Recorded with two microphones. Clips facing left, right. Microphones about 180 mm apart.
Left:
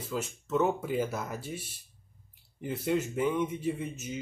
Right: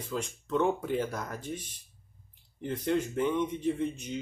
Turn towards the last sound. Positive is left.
turn(degrees=5)  # may be behind; listen again after turning